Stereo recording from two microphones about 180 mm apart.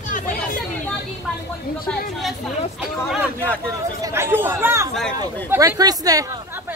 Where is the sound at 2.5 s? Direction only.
Centre (ahead or behind).